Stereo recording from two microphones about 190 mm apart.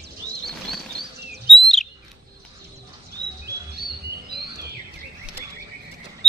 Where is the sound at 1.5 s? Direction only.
Centre (ahead or behind).